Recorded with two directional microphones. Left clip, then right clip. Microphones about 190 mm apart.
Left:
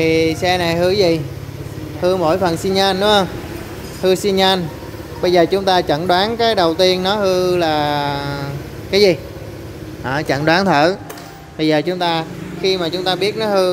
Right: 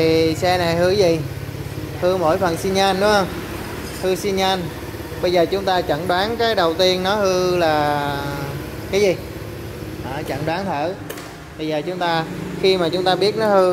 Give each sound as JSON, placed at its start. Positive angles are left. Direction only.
{"t": 0.0, "sound": "speech", "side_deg": 20}
{"t": 4.0, "sound": "speech", "side_deg": 35}
{"t": 10.0, "sound": "speech", "side_deg": 60}
{"t": 12.0, "sound": "speech", "side_deg": 20}
{"t": 12.6, "sound": "speech", "side_deg": -5}